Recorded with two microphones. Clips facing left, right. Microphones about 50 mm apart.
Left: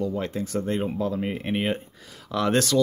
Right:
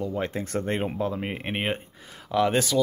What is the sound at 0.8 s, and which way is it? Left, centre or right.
Speech, right.